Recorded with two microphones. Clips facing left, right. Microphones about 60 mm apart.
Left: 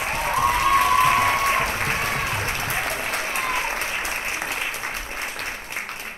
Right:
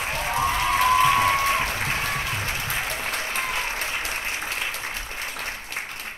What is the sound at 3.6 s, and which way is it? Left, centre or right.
Applause, left.